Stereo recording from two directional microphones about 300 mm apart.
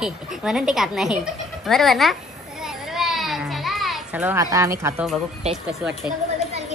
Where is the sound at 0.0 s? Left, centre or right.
Centre.